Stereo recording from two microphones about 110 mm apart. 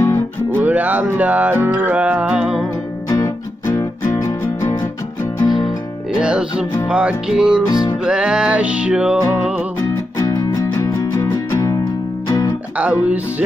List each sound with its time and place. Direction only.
0.0 s music: 25° left (ahead or behind)
0.7 s music: 15° right (ahead or behind)
3.1 s music: 35° left (ahead or behind)
5.4 s music: 40° left (ahead or behind)
6.1 s music: 10° right (ahead or behind)
7.6 s music: 35° left (ahead or behind)
8.0 s music: 5° right (ahead or behind)
9.8 s music: 30° left (ahead or behind)
12.7 s music: 15° right (ahead or behind)